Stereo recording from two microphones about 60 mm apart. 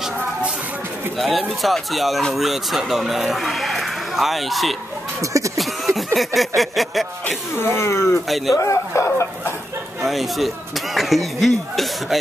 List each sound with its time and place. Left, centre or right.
1.1 s speech: centre
5.2 s speech: right
5.6 s a sound: centre
6.1 s speech: centre
7.5 s speech: left
10.0 s speech: centre